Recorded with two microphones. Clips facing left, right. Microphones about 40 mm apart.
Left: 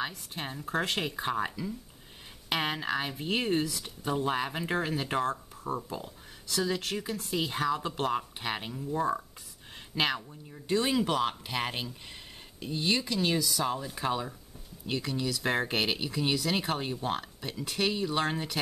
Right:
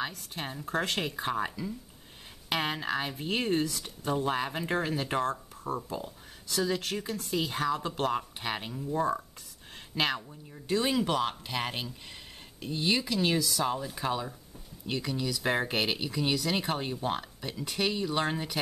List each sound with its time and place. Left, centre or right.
0.3 s speech: centre